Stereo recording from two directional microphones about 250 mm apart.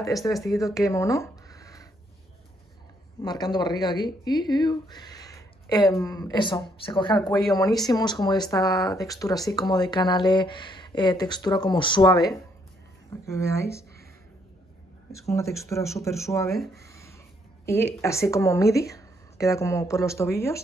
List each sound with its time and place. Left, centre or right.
0.0 s speech: centre
3.2 s speech: centre
15.1 s speech: centre
16.8 s a sound: centre
17.6 s speech: centre